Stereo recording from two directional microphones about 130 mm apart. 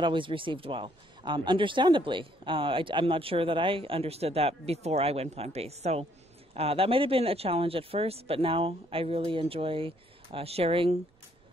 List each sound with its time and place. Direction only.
0.0 s speech: 40° right (ahead or behind)